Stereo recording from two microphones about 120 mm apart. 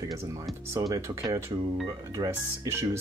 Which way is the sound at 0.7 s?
25° right (ahead or behind).